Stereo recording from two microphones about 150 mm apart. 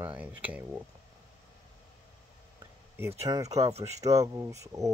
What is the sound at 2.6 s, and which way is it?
Speech, 15° right (ahead or behind).